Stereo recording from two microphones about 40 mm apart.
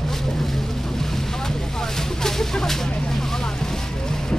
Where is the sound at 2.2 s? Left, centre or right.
Centre.